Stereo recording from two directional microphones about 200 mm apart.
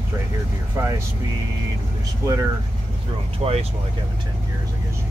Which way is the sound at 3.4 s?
30° right (ahead or behind).